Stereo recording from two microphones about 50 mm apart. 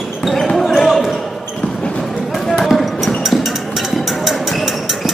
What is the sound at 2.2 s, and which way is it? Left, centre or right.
Basketball bounce, centre.